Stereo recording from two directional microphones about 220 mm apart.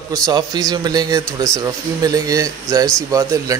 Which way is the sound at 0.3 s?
15° right (ahead or behind).